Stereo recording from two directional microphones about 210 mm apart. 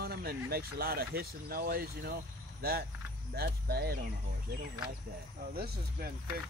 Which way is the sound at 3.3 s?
50° right (ahead or behind).